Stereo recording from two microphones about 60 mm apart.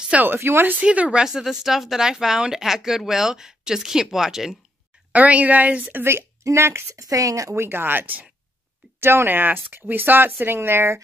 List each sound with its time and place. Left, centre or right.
0.1 s speech: right
0.4 s speech: right
0.7 s a woman's voice: right
1.2 s speech: centre
5.1 s a woman's voice: right
6.4 s speech: right
7.1 s speech: right
7.6 s speech: right